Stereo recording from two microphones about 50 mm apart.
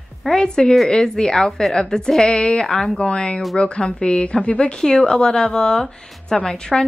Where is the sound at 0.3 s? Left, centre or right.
Centre.